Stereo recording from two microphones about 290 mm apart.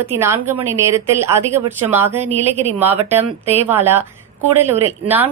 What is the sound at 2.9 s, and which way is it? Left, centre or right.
Speech, right.